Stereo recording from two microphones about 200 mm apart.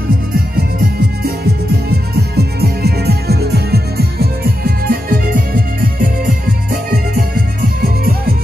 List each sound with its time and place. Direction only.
1.2 s music: 55° right (ahead or behind)